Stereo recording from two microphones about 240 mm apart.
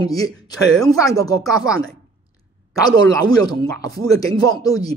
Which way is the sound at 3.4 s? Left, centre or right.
Centre.